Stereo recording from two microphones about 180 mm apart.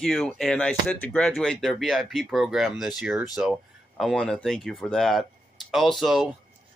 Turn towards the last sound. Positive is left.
turn(degrees=0)  # may be behind; listen again after turning